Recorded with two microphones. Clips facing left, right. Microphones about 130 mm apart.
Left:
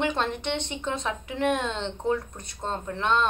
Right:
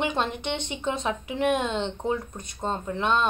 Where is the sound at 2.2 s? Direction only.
20° right (ahead or behind).